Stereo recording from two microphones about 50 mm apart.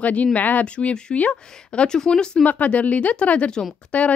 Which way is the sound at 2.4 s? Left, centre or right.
Left.